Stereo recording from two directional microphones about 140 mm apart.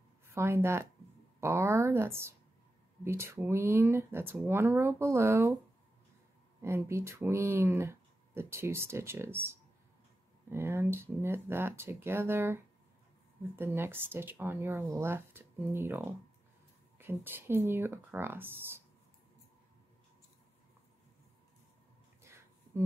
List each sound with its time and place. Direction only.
0.3 s speech: 20° right (ahead or behind)
6.6 s speech: 20° right (ahead or behind)
22.2 s a sound: 20° right (ahead or behind)